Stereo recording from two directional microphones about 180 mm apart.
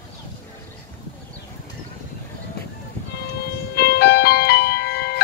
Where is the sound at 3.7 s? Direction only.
60° left (ahead or behind).